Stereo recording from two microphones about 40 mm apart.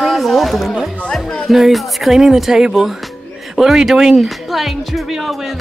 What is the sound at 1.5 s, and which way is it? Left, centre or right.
Speech, centre.